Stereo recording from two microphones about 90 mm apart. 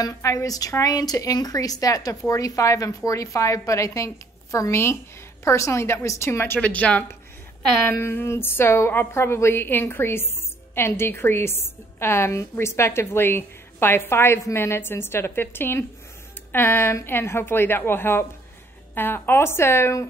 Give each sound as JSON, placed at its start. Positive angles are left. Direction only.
{"t": 0.0, "sound": "a woman's voice", "side_deg": 40}
{"t": 6.6, "sound": "speech", "side_deg": 15}
{"t": 7.9, "sound": "a woman's voice", "side_deg": 25}